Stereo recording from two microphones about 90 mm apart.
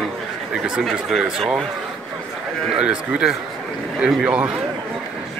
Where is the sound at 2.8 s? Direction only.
10° right (ahead or behind).